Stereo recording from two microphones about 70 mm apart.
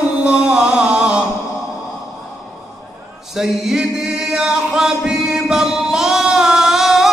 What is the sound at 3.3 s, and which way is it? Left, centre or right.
Chant, centre.